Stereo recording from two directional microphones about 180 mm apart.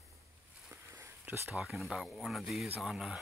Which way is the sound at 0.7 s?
15° right (ahead or behind).